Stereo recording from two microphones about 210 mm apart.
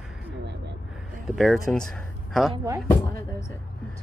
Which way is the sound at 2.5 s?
15° right (ahead or behind).